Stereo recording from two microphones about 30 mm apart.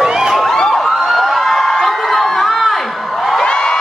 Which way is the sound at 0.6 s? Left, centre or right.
Centre.